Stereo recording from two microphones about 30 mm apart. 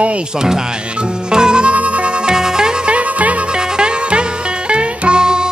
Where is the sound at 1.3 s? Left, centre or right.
Right.